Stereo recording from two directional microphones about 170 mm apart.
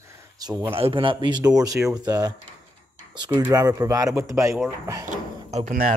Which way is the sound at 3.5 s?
20° right (ahead or behind).